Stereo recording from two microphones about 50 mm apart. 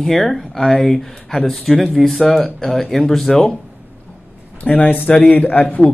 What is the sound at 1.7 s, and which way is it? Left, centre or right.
Speech, centre.